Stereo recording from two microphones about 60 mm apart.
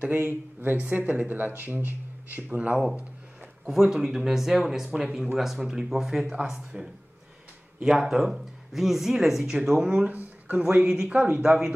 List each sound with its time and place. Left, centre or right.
0.2 s speech: right
3.6 s speech: centre
9.8 s speech: right
10.6 s speech: centre
11.4 s speech: centre